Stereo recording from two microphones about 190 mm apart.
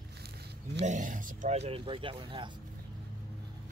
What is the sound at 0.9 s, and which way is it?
Speech, 45° right (ahead or behind).